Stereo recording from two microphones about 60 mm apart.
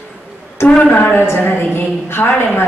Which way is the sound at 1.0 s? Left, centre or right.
Left.